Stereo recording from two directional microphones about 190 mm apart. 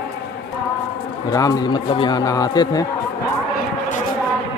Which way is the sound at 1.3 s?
20° left (ahead or behind).